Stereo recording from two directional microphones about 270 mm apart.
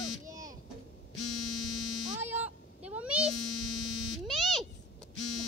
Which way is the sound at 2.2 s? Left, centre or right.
Centre.